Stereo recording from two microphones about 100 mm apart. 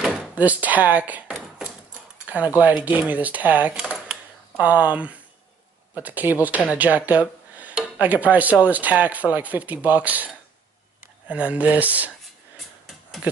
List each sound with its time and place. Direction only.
0.0 s speech: 10° right (ahead or behind)
2.2 s a sound: 15° right (ahead or behind)
2.8 s speech: 15° right (ahead or behind)
3.9 s typewriter: 10° right (ahead or behind)
5.9 s speech: 15° right (ahead or behind)